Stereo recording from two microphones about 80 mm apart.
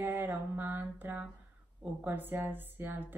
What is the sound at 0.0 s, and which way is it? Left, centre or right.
Mantra, right.